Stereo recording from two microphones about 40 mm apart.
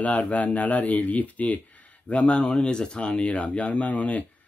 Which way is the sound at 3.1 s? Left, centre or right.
Left.